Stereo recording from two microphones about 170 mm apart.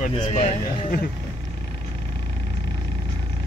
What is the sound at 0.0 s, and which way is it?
Speech, 45° left (ahead or behind).